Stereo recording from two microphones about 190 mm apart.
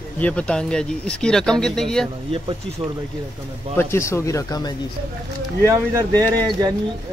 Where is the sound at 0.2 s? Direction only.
5° left (ahead or behind).